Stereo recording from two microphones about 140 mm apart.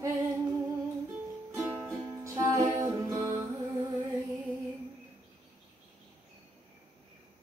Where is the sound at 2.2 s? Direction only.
20° right (ahead or behind).